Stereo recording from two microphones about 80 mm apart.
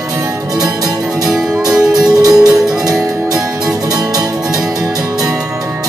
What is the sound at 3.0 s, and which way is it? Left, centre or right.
Music, right.